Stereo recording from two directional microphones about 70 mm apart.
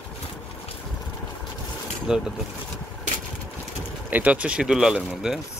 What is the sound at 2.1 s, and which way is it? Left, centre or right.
Speech, centre.